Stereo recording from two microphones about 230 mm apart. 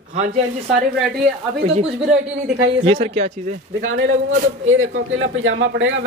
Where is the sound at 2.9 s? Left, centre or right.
Right.